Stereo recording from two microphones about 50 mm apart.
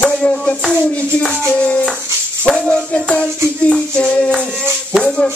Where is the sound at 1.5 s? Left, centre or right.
Left.